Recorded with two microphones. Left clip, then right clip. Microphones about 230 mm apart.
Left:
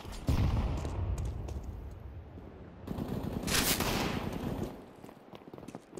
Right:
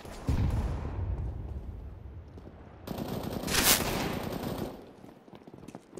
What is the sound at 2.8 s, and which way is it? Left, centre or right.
Machine gun, right.